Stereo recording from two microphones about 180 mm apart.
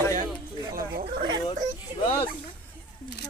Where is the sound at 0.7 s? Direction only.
50° right (ahead or behind).